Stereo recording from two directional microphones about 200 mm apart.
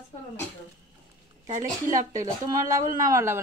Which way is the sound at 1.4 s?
20° right (ahead or behind).